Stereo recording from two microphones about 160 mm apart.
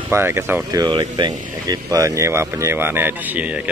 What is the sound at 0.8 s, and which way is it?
A man's voice, 25° right (ahead or behind).